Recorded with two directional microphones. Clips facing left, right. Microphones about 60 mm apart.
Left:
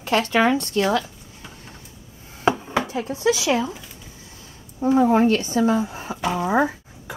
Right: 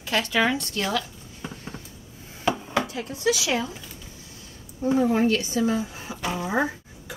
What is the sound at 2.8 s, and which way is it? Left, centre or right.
Speech, left.